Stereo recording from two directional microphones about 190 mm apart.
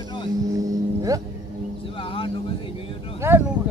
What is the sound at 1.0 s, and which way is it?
Speech, 20° right (ahead or behind).